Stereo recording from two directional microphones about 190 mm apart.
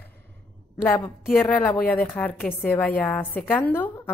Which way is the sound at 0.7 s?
10° left (ahead or behind).